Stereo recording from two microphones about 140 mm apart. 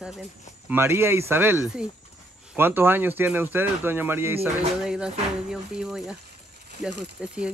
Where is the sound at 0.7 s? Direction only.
15° right (ahead or behind).